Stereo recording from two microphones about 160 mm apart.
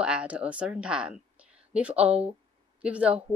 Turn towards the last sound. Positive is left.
turn(degrees=-10)  # may be behind; listen again after turning